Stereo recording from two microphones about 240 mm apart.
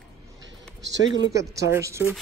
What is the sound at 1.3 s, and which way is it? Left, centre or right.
Speech, centre.